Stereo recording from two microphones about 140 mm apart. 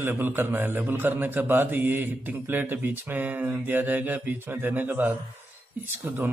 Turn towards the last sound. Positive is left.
turn(degrees=-15)  # may be behind; listen again after turning